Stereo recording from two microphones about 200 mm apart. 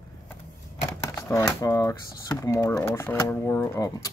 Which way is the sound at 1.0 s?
15° left (ahead or behind).